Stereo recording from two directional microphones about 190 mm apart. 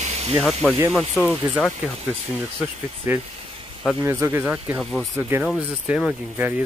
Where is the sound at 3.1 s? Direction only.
10° right (ahead or behind).